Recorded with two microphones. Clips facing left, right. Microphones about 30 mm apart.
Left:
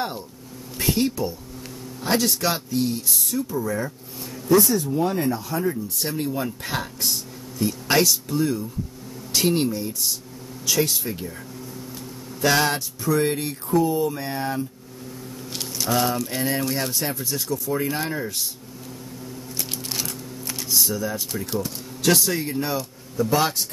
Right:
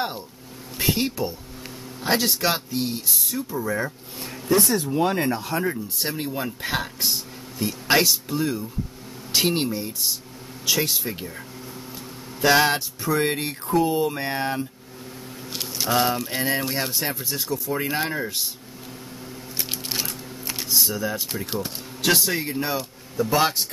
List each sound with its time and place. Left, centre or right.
0.7 s speech: centre
3.1 s speech: centre
3.3 s speech: centre
4.2 s speech: right
5.9 s speech: centre
12.4 s speech: centre
15.5 s a sound: centre
15.9 s speech: right
19.5 s a sound: centre
20.9 s speech: right